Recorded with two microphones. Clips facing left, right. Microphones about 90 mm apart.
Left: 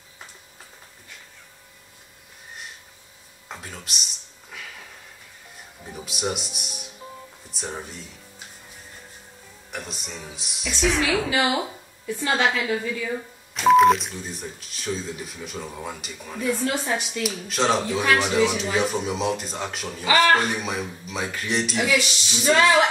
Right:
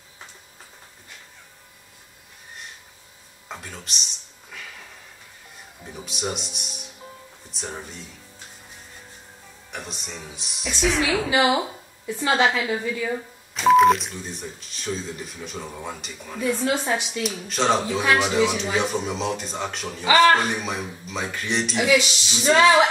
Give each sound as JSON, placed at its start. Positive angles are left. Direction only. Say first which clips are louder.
{"t": 3.4, "sound": "speech", "louder": "right 1 dB", "side_deg": 5}
{"t": 6.0, "sound": "speech", "louder": "left 1 dB", "side_deg": 5}
{"t": 9.7, "sound": "speech", "louder": "left 1 dB", "side_deg": 0}
{"t": 12.1, "sound": "a woman's voice", "louder": "right 2 dB", "side_deg": -15}
{"t": 16.6, "sound": "a woman's voice", "louder": "right 2 dB", "side_deg": -20}
{"t": 17.2, "sound": "speech", "louder": "even", "side_deg": 0}